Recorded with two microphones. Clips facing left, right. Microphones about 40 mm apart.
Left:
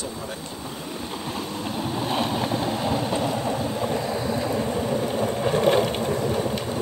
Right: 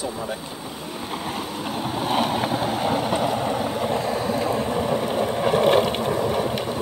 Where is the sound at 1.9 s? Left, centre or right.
Centre.